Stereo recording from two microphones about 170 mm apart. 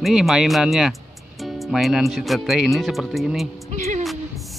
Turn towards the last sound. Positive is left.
turn(degrees=-45)  # may be behind; listen again after turning